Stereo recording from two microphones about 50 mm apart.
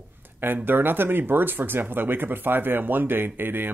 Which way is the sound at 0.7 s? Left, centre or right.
Right.